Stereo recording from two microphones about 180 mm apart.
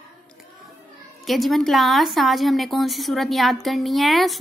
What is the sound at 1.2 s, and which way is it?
A woman's voice, centre (ahead or behind).